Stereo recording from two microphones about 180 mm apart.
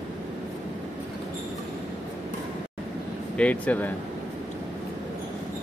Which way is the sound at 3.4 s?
5° left (ahead or behind).